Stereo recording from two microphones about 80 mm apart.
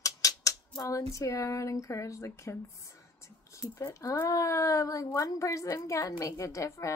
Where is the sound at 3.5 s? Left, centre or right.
Left.